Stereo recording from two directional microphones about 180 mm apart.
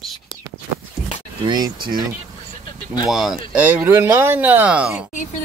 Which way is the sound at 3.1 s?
Centre (ahead or behind).